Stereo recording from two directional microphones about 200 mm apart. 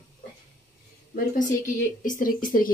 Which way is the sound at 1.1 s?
40° left (ahead or behind).